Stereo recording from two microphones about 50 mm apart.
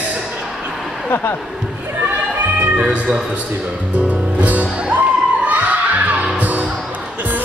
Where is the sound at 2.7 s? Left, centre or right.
Right.